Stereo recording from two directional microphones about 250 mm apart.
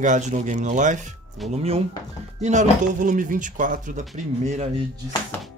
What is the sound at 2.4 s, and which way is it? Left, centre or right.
Speech, right.